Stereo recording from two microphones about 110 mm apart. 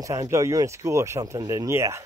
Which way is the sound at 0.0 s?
30° right (ahead or behind).